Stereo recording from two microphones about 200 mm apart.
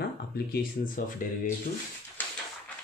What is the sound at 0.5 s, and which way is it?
Speech, 45° left (ahead or behind).